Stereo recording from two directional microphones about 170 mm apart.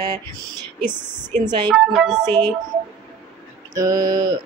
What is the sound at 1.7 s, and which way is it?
Speech, centre (ahead or behind).